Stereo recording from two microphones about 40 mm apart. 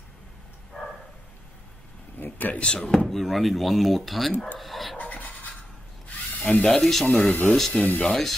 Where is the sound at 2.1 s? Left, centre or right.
Left.